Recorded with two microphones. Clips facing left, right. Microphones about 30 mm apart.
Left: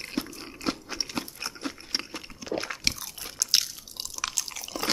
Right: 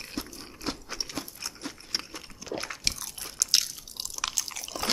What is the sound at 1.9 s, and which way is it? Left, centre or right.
Biting, centre.